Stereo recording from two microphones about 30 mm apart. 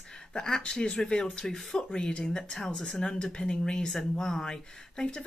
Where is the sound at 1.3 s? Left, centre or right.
Centre.